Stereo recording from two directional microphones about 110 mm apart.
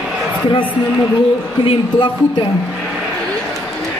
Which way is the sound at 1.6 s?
55° left (ahead or behind).